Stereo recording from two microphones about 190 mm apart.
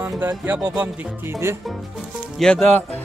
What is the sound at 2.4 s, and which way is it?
Speech, 5° left (ahead or behind).